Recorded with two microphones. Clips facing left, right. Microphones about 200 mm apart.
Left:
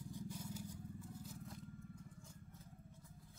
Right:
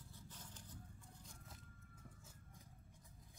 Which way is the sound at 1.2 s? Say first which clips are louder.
Left 10 dB; centre (ahead or behind).